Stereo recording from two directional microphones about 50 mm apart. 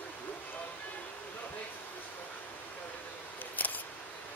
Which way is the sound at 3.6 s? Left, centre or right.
Left.